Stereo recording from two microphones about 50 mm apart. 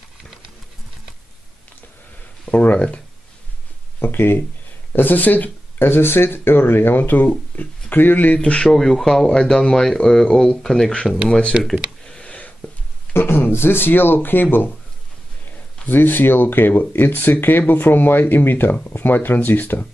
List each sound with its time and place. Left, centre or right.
2.4 s speech: left
4.0 s speech: left
5.8 s speech: left
8.6 s speech: centre
11.7 s a sound: centre
13.1 s speech: left
15.9 s speech: left